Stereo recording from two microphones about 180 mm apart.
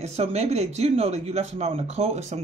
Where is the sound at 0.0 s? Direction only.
35° right (ahead or behind).